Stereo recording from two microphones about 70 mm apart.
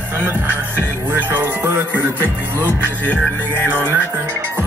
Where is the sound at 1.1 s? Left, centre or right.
Right.